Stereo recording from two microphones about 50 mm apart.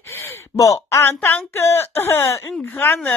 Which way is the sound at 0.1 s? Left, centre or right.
Left.